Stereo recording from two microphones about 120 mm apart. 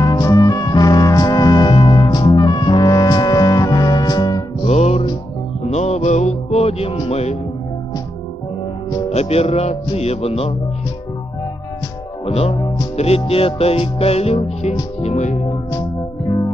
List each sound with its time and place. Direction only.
0.0 s music: 30° left (ahead or behind)
4.6 s music: 65° left (ahead or behind)
9.1 s speech: 60° left (ahead or behind)
12.3 s music: 55° left (ahead or behind)